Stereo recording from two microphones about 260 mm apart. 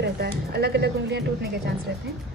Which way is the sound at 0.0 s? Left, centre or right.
Right.